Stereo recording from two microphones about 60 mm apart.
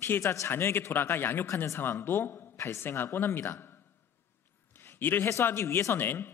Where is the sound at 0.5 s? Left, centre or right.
Left.